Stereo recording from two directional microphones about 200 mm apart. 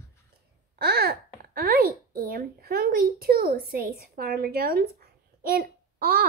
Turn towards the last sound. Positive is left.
turn(degrees=-50)  # may be behind; listen again after turning